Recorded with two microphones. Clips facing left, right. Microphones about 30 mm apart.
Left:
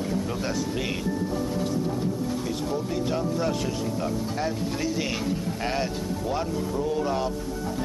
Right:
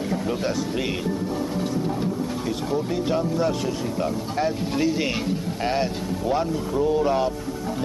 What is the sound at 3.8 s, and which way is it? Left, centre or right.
Speech, centre.